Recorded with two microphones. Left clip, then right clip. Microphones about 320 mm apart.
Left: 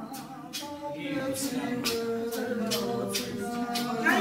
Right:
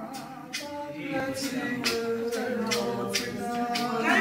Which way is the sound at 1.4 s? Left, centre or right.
Centre.